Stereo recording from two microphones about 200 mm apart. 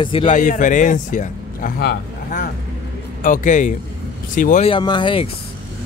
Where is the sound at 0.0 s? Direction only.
25° left (ahead or behind).